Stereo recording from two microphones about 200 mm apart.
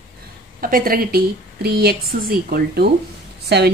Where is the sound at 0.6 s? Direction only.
45° right (ahead or behind).